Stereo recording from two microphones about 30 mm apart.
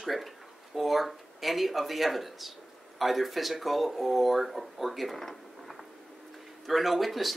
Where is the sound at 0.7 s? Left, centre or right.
Centre.